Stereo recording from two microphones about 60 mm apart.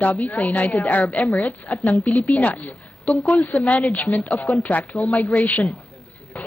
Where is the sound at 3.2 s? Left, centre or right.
Left.